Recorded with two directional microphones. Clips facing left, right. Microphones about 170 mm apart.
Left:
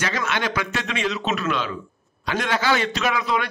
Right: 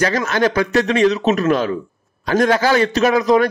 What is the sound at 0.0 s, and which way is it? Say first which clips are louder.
A man's voice: right 8 dB; 40° right (ahead or behind).